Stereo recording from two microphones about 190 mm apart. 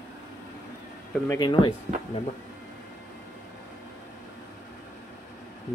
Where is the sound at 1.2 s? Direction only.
25° left (ahead or behind).